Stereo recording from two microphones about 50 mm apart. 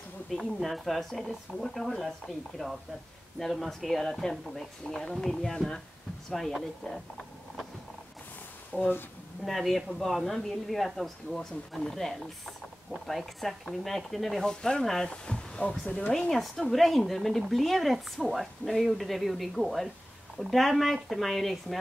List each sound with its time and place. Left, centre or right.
0.3 s speech: centre
8.7 s speech: left
9.4 s speech: centre
14.4 s speech: centre